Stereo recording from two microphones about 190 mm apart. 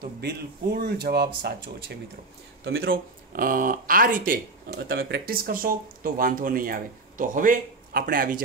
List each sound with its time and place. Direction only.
0.2 s speech: 60° right (ahead or behind)
2.6 s speech: 90° right
2.9 s speech: 50° right (ahead or behind)